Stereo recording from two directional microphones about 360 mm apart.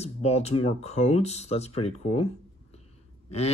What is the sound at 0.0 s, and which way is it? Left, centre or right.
Mantra, centre.